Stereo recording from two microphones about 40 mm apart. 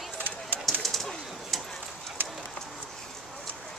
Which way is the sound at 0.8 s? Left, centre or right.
Centre.